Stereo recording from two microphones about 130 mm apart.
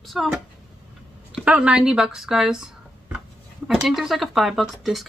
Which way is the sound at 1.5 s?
5° right (ahead or behind).